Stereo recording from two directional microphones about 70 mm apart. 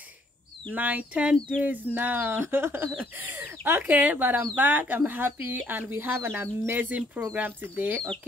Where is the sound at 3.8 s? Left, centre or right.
Right.